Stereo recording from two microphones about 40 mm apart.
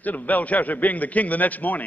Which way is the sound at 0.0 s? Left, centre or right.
Left.